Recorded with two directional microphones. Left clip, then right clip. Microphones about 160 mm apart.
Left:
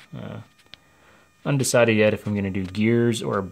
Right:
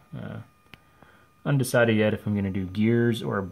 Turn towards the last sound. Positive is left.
turn(degrees=15)  # may be behind; listen again after turning